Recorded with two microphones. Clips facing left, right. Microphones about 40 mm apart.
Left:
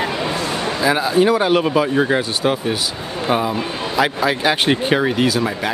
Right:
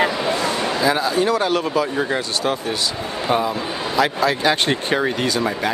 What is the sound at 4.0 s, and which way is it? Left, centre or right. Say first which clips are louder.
Speech: left 1 dB; centre.